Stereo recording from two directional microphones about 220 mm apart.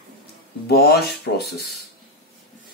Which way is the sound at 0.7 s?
45° left (ahead or behind).